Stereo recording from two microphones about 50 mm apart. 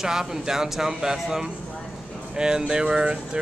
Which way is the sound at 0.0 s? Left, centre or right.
Centre.